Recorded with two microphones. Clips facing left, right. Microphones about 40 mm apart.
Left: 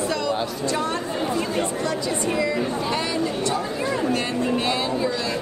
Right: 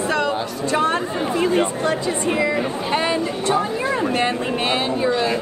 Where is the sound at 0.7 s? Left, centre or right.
Right.